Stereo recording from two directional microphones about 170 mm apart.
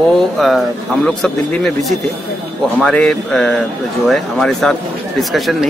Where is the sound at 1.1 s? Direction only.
5° left (ahead or behind).